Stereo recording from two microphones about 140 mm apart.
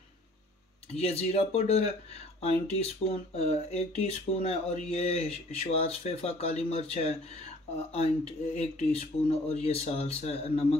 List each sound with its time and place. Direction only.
0.9 s speech: 50° left (ahead or behind)